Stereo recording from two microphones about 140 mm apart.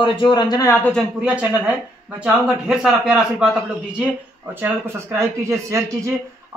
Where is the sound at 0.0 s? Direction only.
30° left (ahead or behind).